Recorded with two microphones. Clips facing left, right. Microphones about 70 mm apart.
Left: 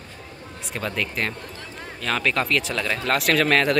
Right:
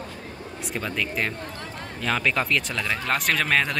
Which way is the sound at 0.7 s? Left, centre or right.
Centre.